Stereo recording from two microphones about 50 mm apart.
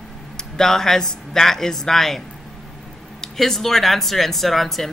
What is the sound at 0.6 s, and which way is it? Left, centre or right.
Speech, centre.